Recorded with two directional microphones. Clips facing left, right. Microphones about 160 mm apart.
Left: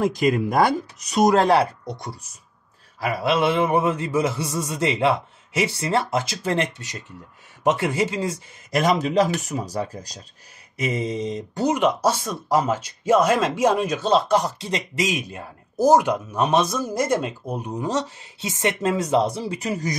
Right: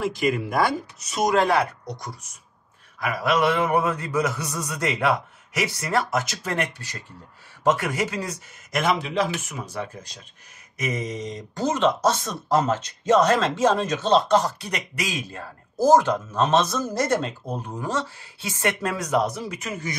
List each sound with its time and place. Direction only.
1.1 s speech: 35° left (ahead or behind); by 14.5 s 10° left (ahead or behind)
14.6 s speech: 25° left (ahead or behind)